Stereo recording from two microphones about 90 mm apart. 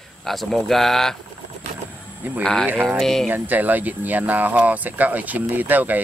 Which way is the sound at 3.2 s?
20° right (ahead or behind).